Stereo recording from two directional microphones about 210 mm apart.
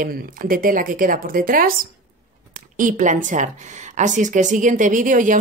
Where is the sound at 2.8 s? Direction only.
35° right (ahead or behind).